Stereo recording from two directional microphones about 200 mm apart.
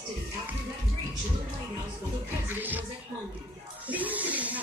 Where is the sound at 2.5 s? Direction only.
10° right (ahead or behind).